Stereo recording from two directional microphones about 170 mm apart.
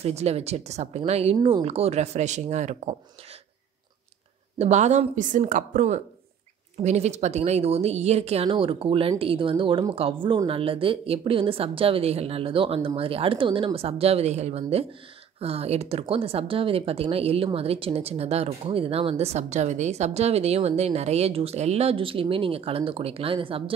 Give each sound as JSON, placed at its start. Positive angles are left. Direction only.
{"t": 0.0, "sound": "speech", "side_deg": -40}
{"t": 4.6, "sound": "speech", "side_deg": -40}